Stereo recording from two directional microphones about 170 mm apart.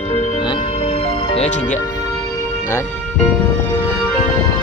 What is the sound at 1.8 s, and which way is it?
Music, 20° left (ahead or behind).